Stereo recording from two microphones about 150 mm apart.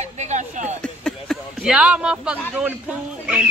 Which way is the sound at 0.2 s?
55° right (ahead or behind).